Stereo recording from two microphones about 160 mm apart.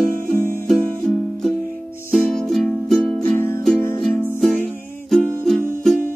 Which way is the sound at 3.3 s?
15° left (ahead or behind).